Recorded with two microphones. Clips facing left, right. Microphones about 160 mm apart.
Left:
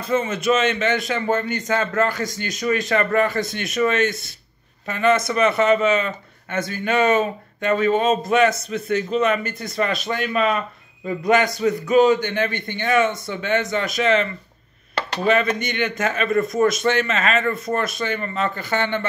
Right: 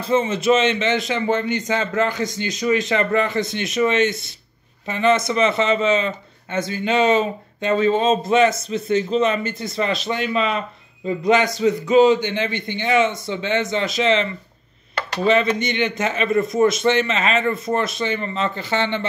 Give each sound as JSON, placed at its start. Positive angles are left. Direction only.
{"t": 0.0, "sound": "speech", "side_deg": -30}